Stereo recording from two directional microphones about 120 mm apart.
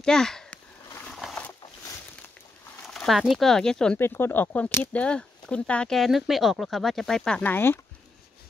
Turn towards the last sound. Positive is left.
turn(degrees=15)  # may be behind; listen again after turning